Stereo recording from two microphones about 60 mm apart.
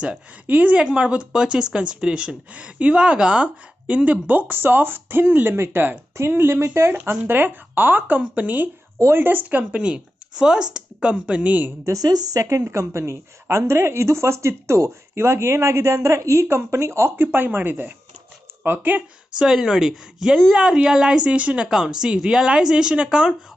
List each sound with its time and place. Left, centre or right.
0.5 s speech: right
11.8 s speech: right
12.6 s speech: right
17.2 s speech: right
19.3 s a woman's voice: centre
21.6 s a woman's voice: centre